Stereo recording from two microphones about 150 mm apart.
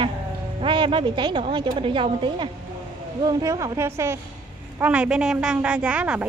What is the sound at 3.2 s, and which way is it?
A woman's voice, 25° right (ahead or behind).